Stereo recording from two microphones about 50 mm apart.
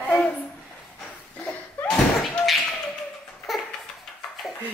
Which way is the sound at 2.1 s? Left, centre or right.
Centre.